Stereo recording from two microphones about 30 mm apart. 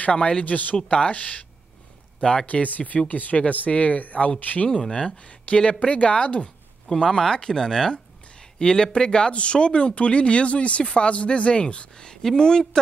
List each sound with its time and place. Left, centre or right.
0.0 s speech: left
0.4 s speech: left
0.8 s speech: left
2.4 s speech: left
5.1 s speech: left
6.9 s speech: centre; by 11.9 s left
12.0 s a sound: left
12.4 s speech: left